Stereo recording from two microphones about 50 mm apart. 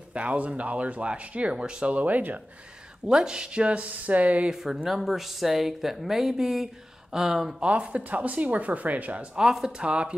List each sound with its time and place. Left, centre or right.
0.1 s speech: right
2.0 s speech: right
3.1 s speech: centre
4.5 s speech: centre
7.6 s speech: right
9.4 s speech: centre